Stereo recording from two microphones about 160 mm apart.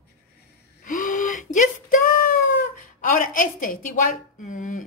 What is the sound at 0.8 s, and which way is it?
Gasp, 55° left (ahead or behind).